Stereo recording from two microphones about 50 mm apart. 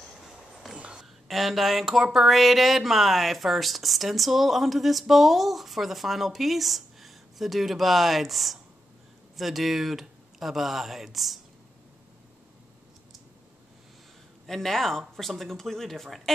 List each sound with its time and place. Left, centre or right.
0.7 s a sound: right
1.3 s speech: centre
14.4 s speech: centre